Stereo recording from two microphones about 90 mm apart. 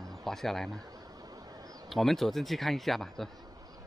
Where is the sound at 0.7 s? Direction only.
45° right (ahead or behind).